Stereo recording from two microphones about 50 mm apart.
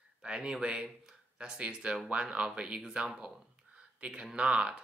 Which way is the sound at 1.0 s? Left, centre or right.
Right.